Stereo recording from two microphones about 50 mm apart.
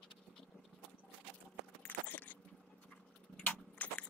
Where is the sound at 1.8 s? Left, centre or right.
Left.